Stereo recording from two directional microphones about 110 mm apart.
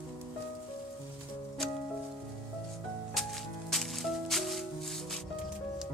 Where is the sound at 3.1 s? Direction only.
Centre (ahead or behind).